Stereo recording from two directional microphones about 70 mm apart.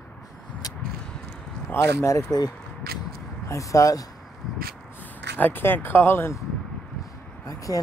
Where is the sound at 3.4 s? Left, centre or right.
Left.